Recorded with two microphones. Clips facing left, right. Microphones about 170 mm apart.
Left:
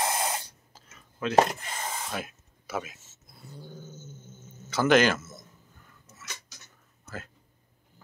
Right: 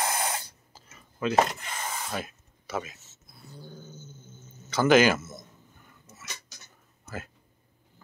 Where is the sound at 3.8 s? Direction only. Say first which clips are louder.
Left 1 dB; 45° left (ahead or behind).